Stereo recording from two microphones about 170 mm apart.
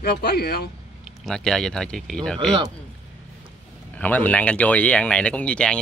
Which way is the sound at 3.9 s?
10° left (ahead or behind).